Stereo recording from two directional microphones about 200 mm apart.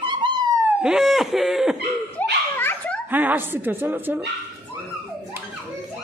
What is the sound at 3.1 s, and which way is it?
A woman's voice, 10° right (ahead or behind).